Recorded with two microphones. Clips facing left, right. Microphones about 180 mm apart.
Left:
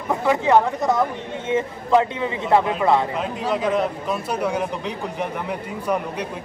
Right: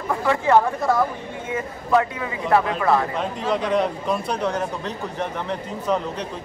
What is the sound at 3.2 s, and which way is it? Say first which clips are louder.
A man's voice: even; 5° left (ahead or behind).